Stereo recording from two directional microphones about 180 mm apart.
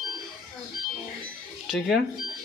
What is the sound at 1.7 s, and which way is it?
Speech, centre (ahead or behind).